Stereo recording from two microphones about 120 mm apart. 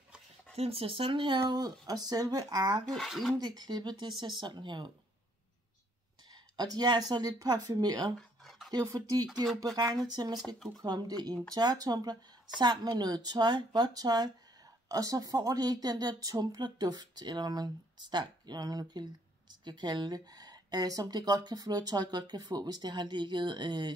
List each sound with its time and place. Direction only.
0.6 s a woman's voice: 50° right (ahead or behind); by 2.8 s 35° right (ahead or behind)
2.8 s speech: 5° left (ahead or behind)
3.3 s a woman's voice: 35° right (ahead or behind)
6.5 s a woman's voice: 35° right (ahead or behind)
8.2 s a sound: centre (ahead or behind)
8.7 s a woman's voice: 30° right (ahead or behind)